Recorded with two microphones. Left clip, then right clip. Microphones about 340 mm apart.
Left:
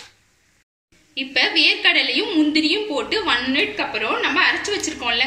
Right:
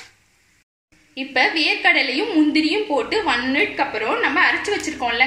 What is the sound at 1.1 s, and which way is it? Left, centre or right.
Speech, centre.